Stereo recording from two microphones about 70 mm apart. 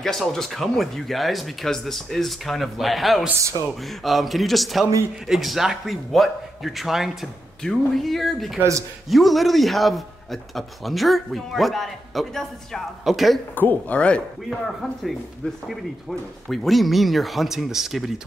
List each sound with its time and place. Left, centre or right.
0.0 s a man's voice: centre
13.6 s speech: left
14.5 s a man's voice: centre